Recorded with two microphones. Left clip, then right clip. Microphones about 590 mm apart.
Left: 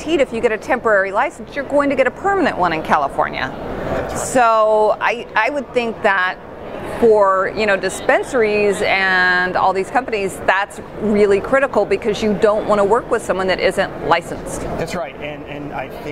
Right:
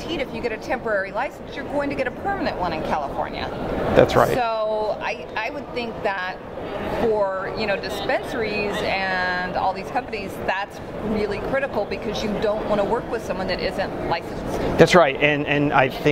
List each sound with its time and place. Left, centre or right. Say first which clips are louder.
0.2 s speech: left 10 dB; left
14.8 s speech: right 10 dB; right